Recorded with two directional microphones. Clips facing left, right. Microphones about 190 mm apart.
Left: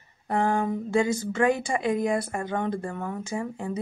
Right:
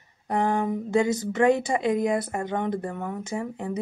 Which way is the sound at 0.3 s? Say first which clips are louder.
Even; 20° right (ahead or behind).